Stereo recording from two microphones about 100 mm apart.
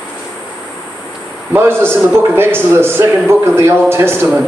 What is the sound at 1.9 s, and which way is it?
A man's voice, 25° right (ahead or behind).